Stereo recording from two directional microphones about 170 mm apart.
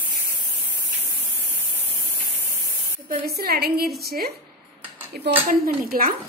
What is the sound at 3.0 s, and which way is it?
A woman's voice, 60° right (ahead or behind).